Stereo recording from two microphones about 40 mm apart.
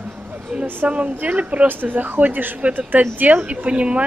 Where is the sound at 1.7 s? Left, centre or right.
Right.